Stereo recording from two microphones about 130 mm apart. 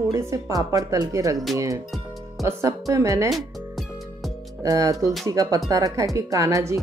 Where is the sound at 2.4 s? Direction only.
25° right (ahead or behind).